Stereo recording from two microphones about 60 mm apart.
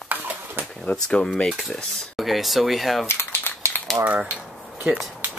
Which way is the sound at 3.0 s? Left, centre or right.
Left.